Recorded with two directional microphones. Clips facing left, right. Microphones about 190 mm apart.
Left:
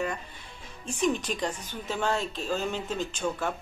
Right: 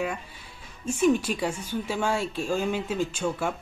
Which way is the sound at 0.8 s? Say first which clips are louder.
Right 5 dB; 10° right (ahead or behind).